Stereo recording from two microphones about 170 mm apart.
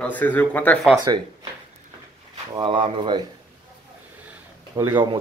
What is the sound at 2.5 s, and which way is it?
Speech, 30° right (ahead or behind).